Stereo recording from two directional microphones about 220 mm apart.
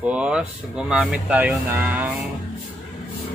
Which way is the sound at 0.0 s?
5° right (ahead or behind).